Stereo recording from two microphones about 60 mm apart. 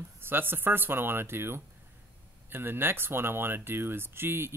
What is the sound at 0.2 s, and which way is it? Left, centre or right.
Speech, right.